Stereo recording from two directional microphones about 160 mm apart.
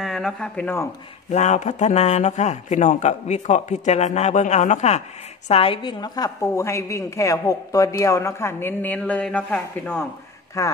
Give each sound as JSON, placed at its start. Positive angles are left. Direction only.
{"t": 0.0, "sound": "speech", "side_deg": 5}
{"t": 1.3, "sound": "a man's voice", "side_deg": 45}